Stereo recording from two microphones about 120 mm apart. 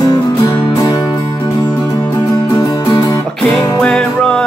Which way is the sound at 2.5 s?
30° left (ahead or behind).